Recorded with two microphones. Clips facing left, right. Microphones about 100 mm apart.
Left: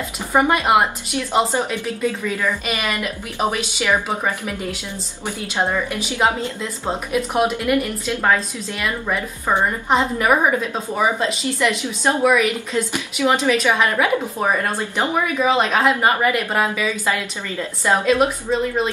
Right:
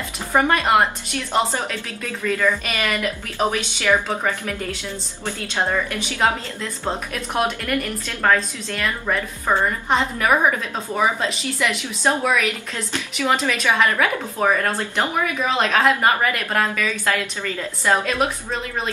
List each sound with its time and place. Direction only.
0.3 s a woman's voice: 10° left (ahead or behind)
7.7 s a woman's voice: 15° left (ahead or behind)